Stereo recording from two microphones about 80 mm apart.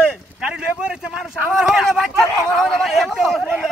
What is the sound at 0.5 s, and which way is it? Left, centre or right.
Speech, centre.